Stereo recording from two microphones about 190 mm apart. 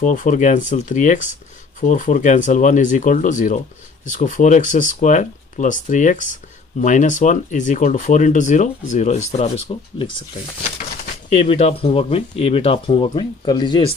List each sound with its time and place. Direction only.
0.0 s speech: 45° left (ahead or behind)
11.4 s speech: 30° left (ahead or behind)